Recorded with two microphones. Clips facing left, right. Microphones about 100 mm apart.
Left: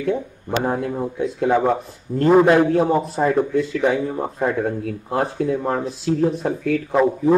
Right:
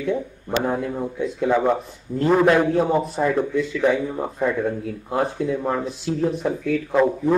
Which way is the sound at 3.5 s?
40° left (ahead or behind).